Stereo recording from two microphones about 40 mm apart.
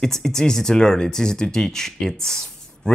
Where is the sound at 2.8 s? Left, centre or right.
Left.